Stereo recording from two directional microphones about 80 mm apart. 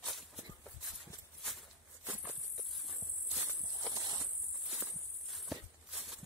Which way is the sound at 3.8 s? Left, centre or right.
Right.